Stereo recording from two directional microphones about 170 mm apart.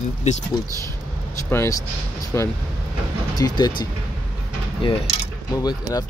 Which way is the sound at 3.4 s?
25° left (ahead or behind).